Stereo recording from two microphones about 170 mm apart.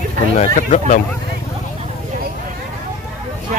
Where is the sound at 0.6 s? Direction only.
50° left (ahead or behind).